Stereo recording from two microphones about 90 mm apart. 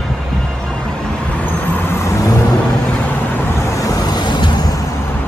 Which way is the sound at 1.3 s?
20° left (ahead or behind).